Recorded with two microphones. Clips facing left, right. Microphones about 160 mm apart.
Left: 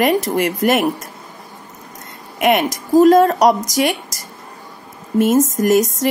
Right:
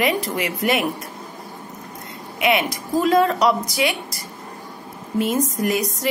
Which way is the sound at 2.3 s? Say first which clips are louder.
Left 5 dB; 45° left (ahead or behind).